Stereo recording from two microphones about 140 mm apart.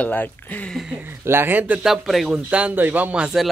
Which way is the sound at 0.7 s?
5° right (ahead or behind).